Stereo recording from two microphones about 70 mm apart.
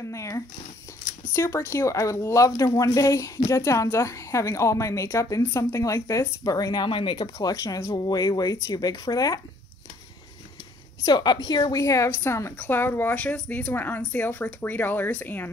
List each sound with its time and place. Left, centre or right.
0.0 s zipper: left
1.3 s speech: left
7.9 s speech: left
11.1 s a woman's voice: left
11.8 s speech: left
12.1 s a woman's voice: left
12.5 s speech: left